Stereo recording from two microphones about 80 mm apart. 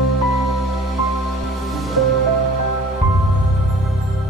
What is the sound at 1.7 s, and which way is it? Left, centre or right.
Music, centre.